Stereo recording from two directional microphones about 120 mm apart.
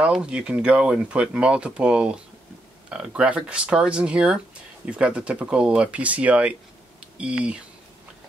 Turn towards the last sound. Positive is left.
turn(degrees=-10)  # may be behind; listen again after turning